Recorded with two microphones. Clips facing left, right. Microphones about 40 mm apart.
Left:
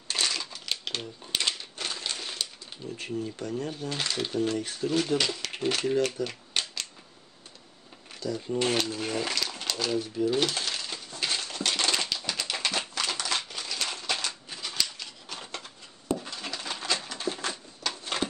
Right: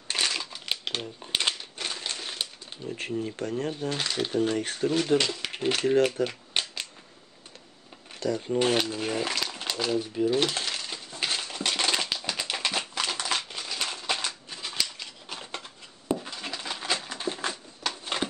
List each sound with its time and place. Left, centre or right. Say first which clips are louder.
0.1 s crumpling: right 1 dB; right
1.8 s crumpling: even; centre
3.2 s speech: right 2 dB; right
3.9 s speech: right 2 dB; centre
4.6 s speech: right 3 dB; right
4.9 s speech: right 1 dB; centre
6.2 s speech: right 4 dB; right
6.5 s typewriter: right 1 dB; centre
8.4 s speech: right 2 dB; right
10.3 s coin: right 1 dB; centre
11.1 s typewriter: right 1 dB; centre
13.5 s a sound: right 1 dB; centre
14.6 s typewriter: even; centre
15.3 s a sound: right 1 dB; centre